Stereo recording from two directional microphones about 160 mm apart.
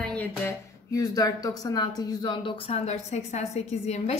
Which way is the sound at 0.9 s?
20° left (ahead or behind).